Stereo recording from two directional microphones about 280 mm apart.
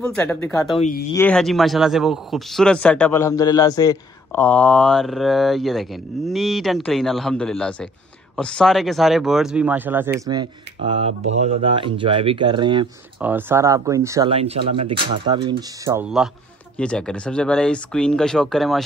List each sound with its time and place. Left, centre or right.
0.1 s speech: centre
0.7 s speech: left
1.1 s a man's voice: centre